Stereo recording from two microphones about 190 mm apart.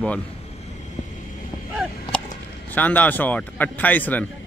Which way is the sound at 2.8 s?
10° left (ahead or behind).